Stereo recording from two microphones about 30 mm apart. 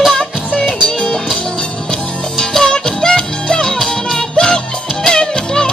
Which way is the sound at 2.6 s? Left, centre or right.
Left.